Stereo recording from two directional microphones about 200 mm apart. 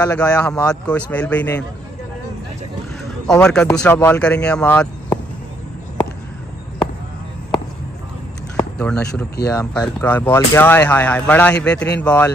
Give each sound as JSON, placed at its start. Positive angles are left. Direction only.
{"t": 0.0, "sound": "speech", "side_deg": 15}
{"t": 3.3, "sound": "speech", "side_deg": 5}
{"t": 8.5, "sound": "a sound", "side_deg": 5}
{"t": 9.5, "sound": "speech", "side_deg": 15}